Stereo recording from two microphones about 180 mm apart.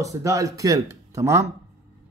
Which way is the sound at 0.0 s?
15° right (ahead or behind).